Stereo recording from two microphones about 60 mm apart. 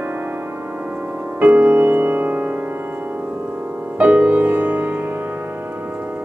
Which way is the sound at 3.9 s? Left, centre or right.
Right.